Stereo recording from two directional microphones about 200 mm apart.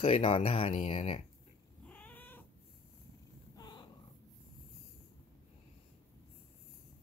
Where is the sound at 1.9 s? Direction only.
10° left (ahead or behind).